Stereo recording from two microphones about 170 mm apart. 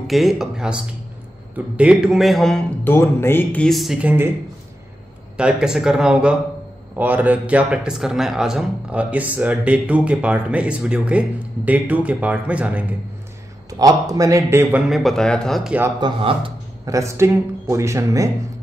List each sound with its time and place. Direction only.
0.0 s speech: centre (ahead or behind)
2.9 s speech: 15° left (ahead or behind); by 4.3 s 10° right (ahead or behind)
5.4 s speech: 5° right (ahead or behind)
13.7 s speech: 20° right (ahead or behind); by 15.9 s 5° right (ahead or behind)
16.0 s a man's voice: 30° right (ahead or behind)
16.9 s speech: 15° right (ahead or behind)